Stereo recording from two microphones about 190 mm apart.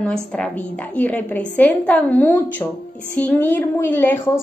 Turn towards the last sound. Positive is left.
turn(degrees=10)  # may be behind; listen again after turning